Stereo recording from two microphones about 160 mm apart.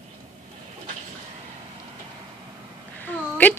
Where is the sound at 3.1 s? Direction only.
10° left (ahead or behind).